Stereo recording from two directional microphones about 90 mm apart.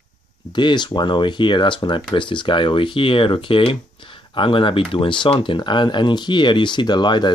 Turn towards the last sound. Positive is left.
turn(degrees=55)  # may be behind; listen again after turning